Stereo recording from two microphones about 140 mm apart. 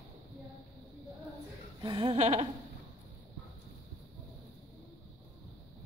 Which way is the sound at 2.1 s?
50° right (ahead or behind).